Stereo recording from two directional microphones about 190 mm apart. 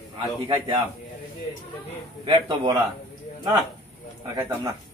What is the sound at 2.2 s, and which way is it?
Speech, 25° right (ahead or behind).